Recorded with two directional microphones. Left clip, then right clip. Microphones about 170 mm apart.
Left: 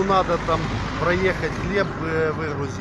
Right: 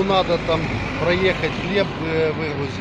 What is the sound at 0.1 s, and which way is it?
Speech, 15° left (ahead or behind).